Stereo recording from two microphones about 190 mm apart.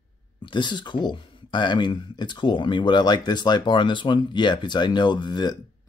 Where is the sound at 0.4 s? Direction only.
25° left (ahead or behind).